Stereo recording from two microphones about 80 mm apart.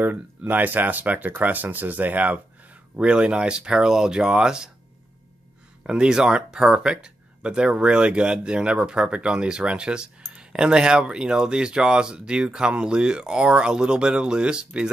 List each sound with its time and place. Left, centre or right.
0.0 s speech: right
5.9 s speech: centre